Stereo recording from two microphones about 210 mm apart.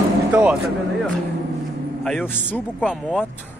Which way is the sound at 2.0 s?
5° left (ahead or behind).